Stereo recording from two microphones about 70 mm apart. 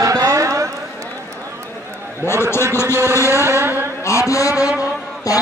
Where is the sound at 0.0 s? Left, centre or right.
Right.